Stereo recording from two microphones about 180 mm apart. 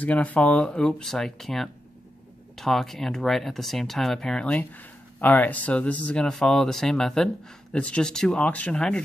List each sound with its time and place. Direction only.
0.0 s speech: 10° left (ahead or behind)